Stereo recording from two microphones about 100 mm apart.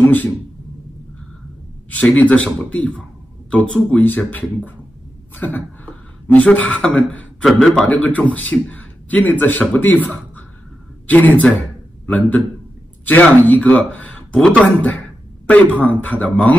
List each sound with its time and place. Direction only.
0.0 s a man's voice: 15° left (ahead or behind)
1.9 s a man's voice: 15° left (ahead or behind)